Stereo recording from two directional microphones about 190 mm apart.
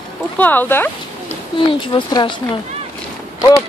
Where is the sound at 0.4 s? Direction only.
10° left (ahead or behind).